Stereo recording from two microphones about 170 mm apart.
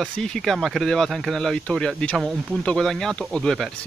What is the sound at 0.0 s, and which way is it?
Speech, centre (ahead or behind).